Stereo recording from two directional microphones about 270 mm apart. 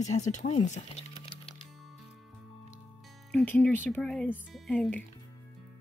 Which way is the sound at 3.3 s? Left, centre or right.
Centre.